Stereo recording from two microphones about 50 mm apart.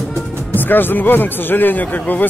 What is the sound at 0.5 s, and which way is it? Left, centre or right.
Speech, left.